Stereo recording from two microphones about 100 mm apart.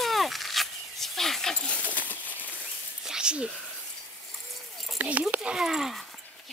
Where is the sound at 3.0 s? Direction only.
10° right (ahead or behind).